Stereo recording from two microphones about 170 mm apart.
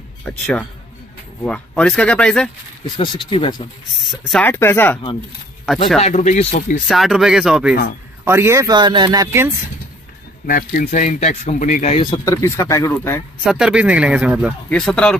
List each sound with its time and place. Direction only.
0.2 s speech: 5° left (ahead or behind)
3.0 s speech: 30° left (ahead or behind)
4.3 s speech: 10° left (ahead or behind)
5.9 s speech: 40° left (ahead or behind)
6.9 s speech: centre (ahead or behind)
8.3 s speech: 15° right (ahead or behind)
10.4 s speech: 55° left (ahead or behind)
12.0 s speech: 25° left (ahead or behind)
13.4 s speech: 5° right (ahead or behind)
14.7 s speech: 5° left (ahead or behind)